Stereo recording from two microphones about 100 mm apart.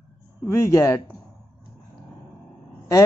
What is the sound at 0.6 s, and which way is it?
Speech, 25° left (ahead or behind).